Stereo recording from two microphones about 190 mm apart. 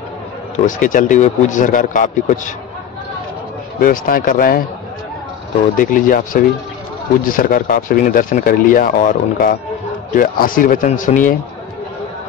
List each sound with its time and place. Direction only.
0.7 s speech: 45° left (ahead or behind)
3.8 s speech: 45° left (ahead or behind)
5.8 s speech: 45° left (ahead or behind)